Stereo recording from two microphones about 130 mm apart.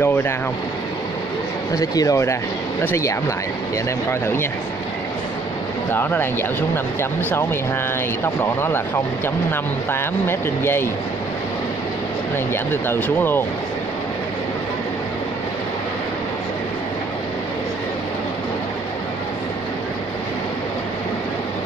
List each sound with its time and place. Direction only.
0.0 s speech: 15° left (ahead or behind)
1.8 s speech: 25° left (ahead or behind)
5.9 s speech: 15° left (ahead or behind)
12.8 s speech: 15° left (ahead or behind)